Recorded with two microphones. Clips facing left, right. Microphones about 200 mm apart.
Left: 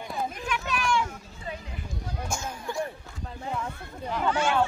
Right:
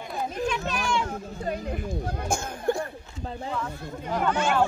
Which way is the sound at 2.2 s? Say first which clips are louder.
Right 8 dB; 55° right (ahead or behind).